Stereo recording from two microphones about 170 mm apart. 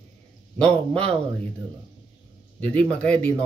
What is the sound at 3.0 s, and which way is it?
Speech, 5° left (ahead or behind).